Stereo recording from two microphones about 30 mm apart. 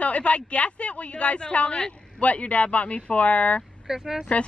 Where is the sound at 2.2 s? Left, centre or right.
Left.